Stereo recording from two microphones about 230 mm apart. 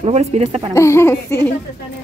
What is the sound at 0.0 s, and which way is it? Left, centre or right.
Speech, right.